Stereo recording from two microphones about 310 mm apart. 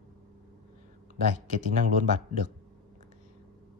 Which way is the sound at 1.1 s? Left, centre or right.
Right.